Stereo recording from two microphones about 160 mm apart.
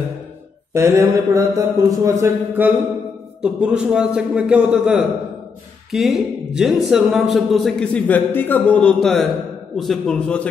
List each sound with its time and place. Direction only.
0.7 s a man's voice: 20° right (ahead or behind); by 10.5 s 5° left (ahead or behind)